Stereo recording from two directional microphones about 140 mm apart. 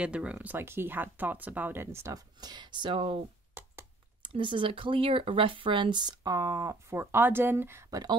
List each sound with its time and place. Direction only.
0.0 s speech: 10° right (ahead or behind)